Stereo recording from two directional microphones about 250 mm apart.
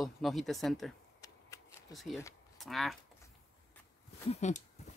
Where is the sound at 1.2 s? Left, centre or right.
Centre.